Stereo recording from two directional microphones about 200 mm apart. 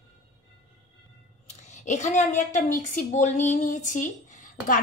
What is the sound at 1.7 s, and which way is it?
A woman's voice, 35° left (ahead or behind).